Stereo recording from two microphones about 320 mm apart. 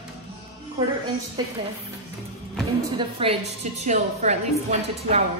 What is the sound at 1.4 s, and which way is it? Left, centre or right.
Speech, centre.